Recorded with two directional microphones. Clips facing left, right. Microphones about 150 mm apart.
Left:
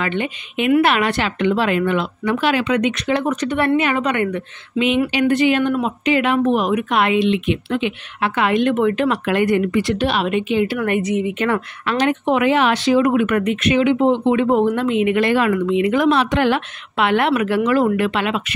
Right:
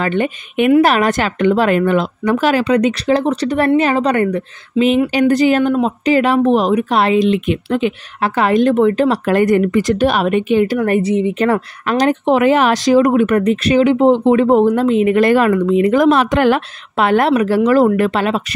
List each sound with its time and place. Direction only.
0.0 s speech: 45° right (ahead or behind)